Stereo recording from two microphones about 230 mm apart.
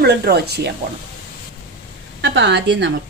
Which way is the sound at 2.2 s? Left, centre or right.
Right.